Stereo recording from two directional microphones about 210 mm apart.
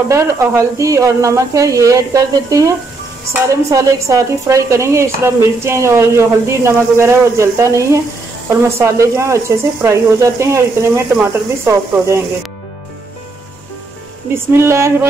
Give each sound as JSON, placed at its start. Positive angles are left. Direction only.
{"t": 0.1, "sound": "speech", "side_deg": -15}
{"t": 3.7, "sound": "speech", "side_deg": -15}
{"t": 14.3, "sound": "speech", "side_deg": -10}